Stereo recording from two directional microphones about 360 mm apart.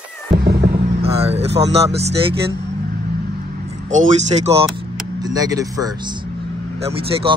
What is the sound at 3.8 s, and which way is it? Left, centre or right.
Speech, centre.